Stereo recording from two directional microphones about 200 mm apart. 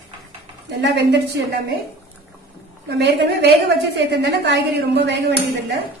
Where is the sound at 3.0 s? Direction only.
60° right (ahead or behind).